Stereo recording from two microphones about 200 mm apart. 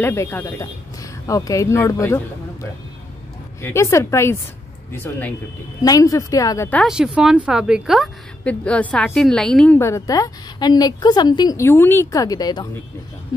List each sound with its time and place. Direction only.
0.0 s a woman's voice: 10° left (ahead or behind)
5.8 s a woman's voice: 15° left (ahead or behind)
6.8 s a woman's voice: 5° right (ahead or behind); by 12.6 s 20° left (ahead or behind)